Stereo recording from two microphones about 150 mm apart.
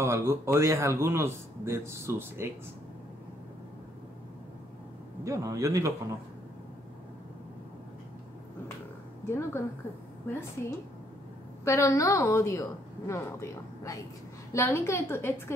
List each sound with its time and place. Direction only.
0.0 s a man's voice: 20° right (ahead or behind)
5.2 s speech: 20° right (ahead or behind)
9.2 s a woman's voice: 15° left (ahead or behind)
11.6 s a woman's voice: 20° left (ahead or behind)